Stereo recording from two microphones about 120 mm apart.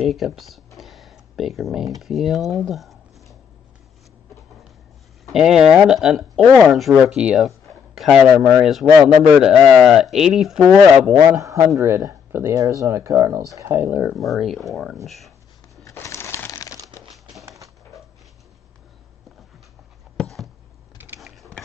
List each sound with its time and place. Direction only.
0.0 s speech: centre (ahead or behind)
0.7 s tick-tock: centre (ahead or behind)
2.0 s speech: centre (ahead or behind)
5.2 s speech: 5° right (ahead or behind)
11.1 s a man's voice: 20° right (ahead or behind)
14.1 s speech: centre (ahead or behind)
15.8 s a sound: 25° left (ahead or behind)
20.2 s a sound: centre (ahead or behind)